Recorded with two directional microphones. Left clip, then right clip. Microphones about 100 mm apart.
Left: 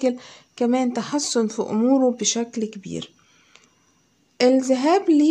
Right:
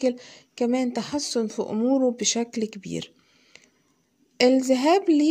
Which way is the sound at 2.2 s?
45° right (ahead or behind).